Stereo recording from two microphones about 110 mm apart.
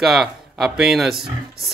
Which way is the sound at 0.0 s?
5° right (ahead or behind).